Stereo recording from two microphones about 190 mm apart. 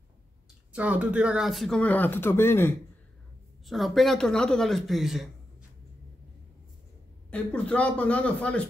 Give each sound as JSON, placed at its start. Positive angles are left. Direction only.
{"t": 0.7, "sound": "speech", "side_deg": -5}
{"t": 3.6, "sound": "speech", "side_deg": 0}
{"t": 7.2, "sound": "a man's voice", "side_deg": 5}